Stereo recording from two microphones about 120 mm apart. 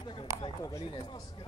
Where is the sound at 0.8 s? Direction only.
45° left (ahead or behind).